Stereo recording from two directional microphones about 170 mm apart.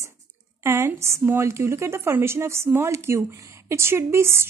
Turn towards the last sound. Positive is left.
turn(degrees=-15)  # may be behind; listen again after turning